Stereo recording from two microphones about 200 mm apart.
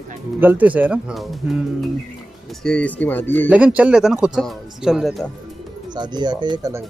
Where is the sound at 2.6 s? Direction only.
5° left (ahead or behind).